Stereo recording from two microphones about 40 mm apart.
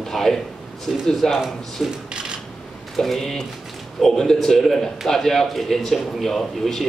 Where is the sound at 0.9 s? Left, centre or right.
Centre.